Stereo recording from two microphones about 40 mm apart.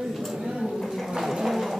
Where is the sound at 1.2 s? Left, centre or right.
Centre.